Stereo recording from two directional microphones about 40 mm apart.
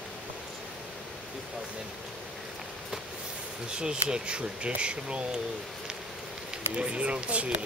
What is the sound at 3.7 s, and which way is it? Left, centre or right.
Speech, right.